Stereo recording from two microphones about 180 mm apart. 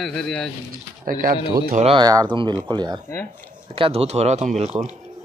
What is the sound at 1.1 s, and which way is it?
Speech, 55° right (ahead or behind).